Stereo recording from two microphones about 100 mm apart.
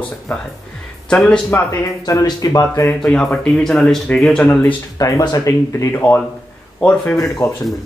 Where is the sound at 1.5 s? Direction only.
25° left (ahead or behind).